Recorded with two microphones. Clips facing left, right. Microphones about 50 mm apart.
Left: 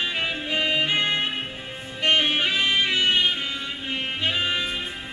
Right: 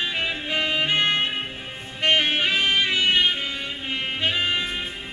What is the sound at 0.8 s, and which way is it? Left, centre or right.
Music, right.